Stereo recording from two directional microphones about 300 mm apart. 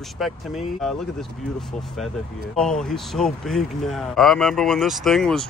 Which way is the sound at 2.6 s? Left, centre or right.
Centre.